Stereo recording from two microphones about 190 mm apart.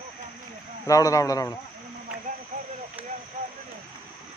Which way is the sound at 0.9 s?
15° left (ahead or behind).